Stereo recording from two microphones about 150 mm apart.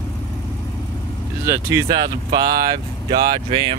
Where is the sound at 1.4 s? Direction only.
20° right (ahead or behind).